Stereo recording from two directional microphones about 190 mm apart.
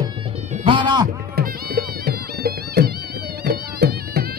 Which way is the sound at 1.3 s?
50° right (ahead or behind).